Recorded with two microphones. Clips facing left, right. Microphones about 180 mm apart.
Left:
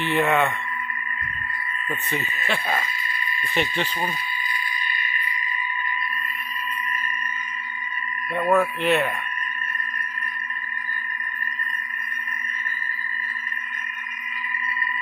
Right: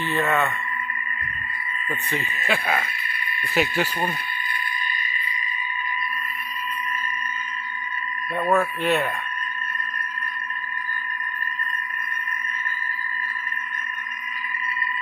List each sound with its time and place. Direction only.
0.2 s speech: 10° left (ahead or behind)
2.4 s speech: 5° right (ahead or behind)
2.7 s sheep: 60° right (ahead or behind)
3.5 s speech: 10° right (ahead or behind)
8.4 s speech: centre (ahead or behind)